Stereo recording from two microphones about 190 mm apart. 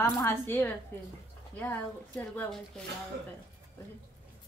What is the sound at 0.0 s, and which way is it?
A woman's voice, 10° left (ahead or behind).